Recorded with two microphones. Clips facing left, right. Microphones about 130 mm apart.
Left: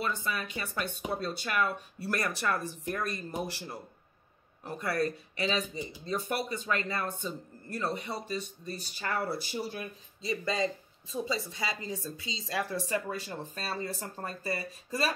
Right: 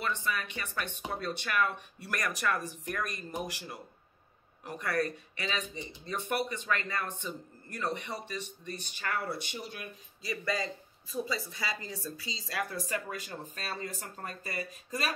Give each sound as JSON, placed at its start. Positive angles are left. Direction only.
{"t": 0.0, "sound": "speech", "side_deg": 30}